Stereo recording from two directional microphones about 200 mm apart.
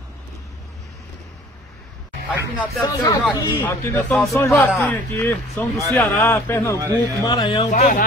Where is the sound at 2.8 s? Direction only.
20° left (ahead or behind).